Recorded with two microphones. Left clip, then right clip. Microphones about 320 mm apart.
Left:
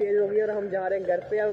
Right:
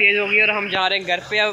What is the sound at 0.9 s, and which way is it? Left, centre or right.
Speech, right.